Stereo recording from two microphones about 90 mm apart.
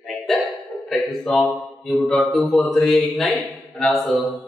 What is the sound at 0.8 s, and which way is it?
Speech, 5° left (ahead or behind).